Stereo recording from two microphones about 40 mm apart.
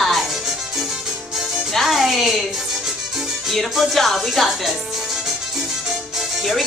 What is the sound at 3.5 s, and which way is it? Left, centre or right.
Speech, centre.